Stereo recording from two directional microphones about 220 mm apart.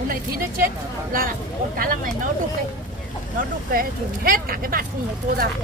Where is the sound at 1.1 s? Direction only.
40° right (ahead or behind).